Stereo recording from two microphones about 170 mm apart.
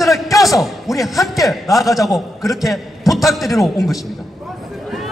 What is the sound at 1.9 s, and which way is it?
Speech, 20° left (ahead or behind).